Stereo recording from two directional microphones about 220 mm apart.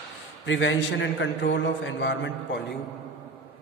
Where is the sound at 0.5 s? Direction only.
60° left (ahead or behind).